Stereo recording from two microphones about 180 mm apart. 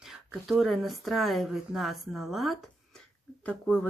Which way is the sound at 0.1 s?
Centre (ahead or behind).